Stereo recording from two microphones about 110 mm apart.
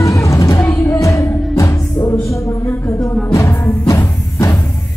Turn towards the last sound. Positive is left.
turn(degrees=30)  # may be behind; listen again after turning